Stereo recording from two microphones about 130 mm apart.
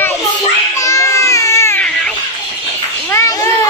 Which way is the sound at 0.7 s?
25° left (ahead or behind).